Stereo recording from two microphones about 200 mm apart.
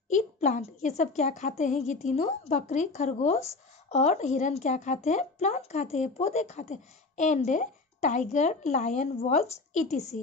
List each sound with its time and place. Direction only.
0.1 s speech: 35° left (ahead or behind)